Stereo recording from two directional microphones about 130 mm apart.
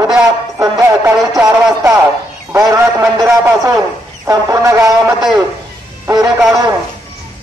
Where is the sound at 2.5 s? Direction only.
20° right (ahead or behind).